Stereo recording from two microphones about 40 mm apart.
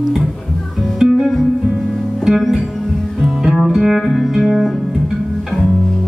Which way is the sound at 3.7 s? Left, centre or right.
Centre.